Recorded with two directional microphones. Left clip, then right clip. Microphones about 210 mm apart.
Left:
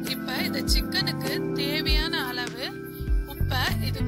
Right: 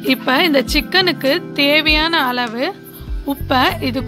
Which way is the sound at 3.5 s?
40° left (ahead or behind).